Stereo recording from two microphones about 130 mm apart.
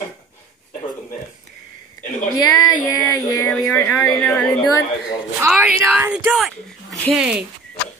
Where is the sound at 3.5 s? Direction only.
15° left (ahead or behind).